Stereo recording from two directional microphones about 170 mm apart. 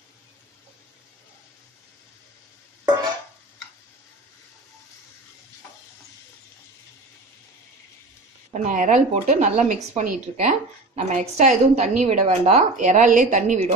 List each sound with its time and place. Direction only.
8.5 s speech: 45° right (ahead or behind)